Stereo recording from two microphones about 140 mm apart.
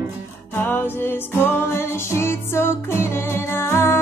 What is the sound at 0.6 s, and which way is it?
Music, 15° left (ahead or behind).